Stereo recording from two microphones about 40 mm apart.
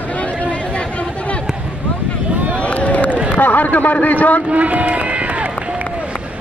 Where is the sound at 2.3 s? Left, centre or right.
Right.